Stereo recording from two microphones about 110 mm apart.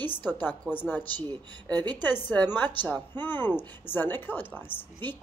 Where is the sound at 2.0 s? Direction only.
15° left (ahead or behind).